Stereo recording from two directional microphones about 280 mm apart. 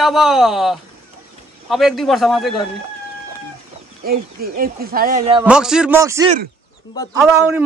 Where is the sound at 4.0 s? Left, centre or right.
Right.